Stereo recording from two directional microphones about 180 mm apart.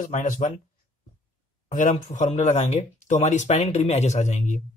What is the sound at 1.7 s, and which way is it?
Speech, 45° left (ahead or behind).